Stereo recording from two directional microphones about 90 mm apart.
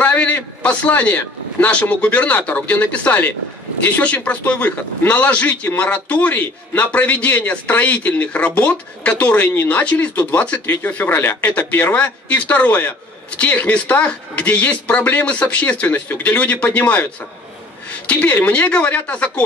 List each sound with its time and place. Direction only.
0.0 s a man's voice: 20° left (ahead or behind)